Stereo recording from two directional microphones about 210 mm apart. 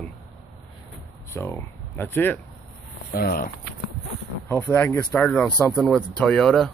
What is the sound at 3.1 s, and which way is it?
Speech, 45° left (ahead or behind).